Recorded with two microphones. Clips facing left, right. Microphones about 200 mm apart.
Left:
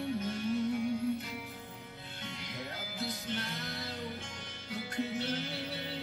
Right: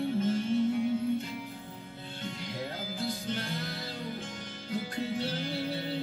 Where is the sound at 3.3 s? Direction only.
35° right (ahead or behind).